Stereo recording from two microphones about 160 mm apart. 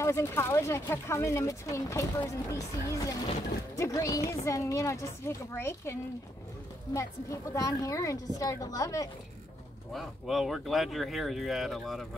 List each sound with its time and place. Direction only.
0.0 s a woman's voice: 15° left (ahead or behind)
9.9 s speech: centre (ahead or behind)